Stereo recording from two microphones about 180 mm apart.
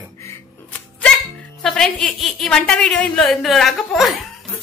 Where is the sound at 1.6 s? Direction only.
Centre (ahead or behind).